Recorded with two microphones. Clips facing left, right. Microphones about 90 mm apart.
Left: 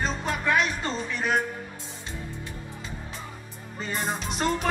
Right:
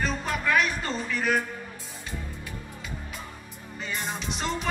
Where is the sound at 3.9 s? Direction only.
40° left (ahead or behind).